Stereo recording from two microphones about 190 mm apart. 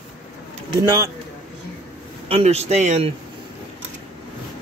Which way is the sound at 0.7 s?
20° right (ahead or behind).